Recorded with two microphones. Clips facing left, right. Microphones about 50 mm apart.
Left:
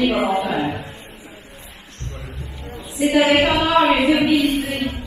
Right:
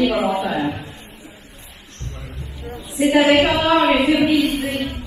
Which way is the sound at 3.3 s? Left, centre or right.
Centre.